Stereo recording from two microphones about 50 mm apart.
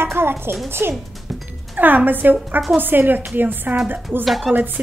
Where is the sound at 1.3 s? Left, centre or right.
Centre.